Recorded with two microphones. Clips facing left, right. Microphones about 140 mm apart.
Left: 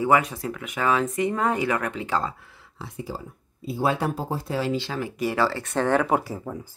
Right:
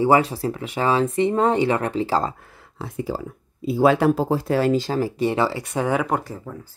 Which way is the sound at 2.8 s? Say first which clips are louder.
Right 7 dB; 60° right (ahead or behind).